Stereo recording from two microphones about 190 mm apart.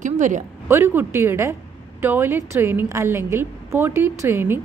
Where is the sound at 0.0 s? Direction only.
40° right (ahead or behind).